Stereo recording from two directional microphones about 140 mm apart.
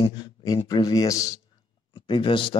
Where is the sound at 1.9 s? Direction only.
35° left (ahead or behind).